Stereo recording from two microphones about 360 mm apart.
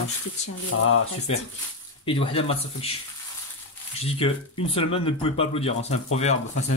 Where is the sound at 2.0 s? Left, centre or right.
Centre.